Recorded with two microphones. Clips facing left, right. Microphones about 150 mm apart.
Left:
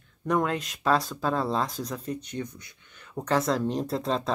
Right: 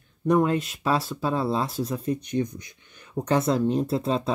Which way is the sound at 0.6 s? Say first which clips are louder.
Even; 5° right (ahead or behind).